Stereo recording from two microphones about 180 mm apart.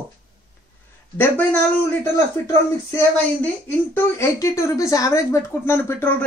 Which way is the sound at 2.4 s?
15° left (ahead or behind).